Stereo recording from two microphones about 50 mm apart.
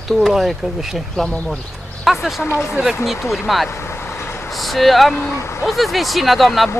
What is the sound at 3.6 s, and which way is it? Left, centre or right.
Vehicle, left.